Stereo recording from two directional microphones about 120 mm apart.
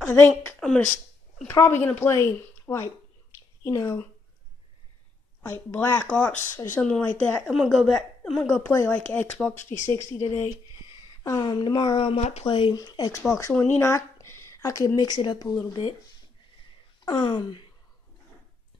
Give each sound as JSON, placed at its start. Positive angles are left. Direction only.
{"t": 0.0, "sound": "a woman's voice", "side_deg": 10}
{"t": 1.5, "sound": "speech", "side_deg": 20}
{"t": 5.4, "sound": "a woman's voice", "side_deg": 20}
{"t": 9.7, "sound": "speech", "side_deg": 25}
{"t": 11.4, "sound": "speech", "side_deg": 40}
{"t": 12.4, "sound": "speech", "side_deg": 45}
{"t": 12.7, "sound": "a woman's voice", "side_deg": 30}
{"t": 17.0, "sound": "speech", "side_deg": 35}